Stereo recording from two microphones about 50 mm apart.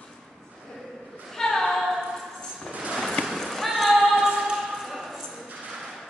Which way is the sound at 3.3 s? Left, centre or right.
Centre.